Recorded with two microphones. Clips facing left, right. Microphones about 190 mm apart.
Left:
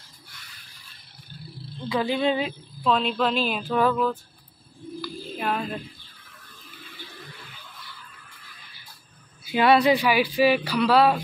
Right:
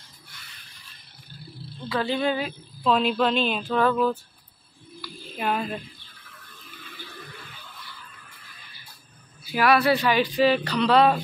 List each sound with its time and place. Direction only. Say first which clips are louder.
1.9 s speech: left 1 dB; 15° left (ahead or behind)
2.8 s speech: right 1 dB; 5° right (ahead or behind)
5.0 s a sound: right 1 dB; centre (ahead or behind)
9.5 s speech: left 2 dB; 20° left (ahead or behind); by 11.1 s 5° left (ahead or behind)